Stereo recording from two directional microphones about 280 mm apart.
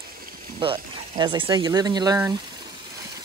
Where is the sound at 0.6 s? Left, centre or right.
Centre.